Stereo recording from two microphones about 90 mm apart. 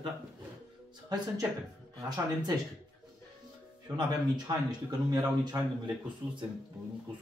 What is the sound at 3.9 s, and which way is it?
Speech, 55° right (ahead or behind).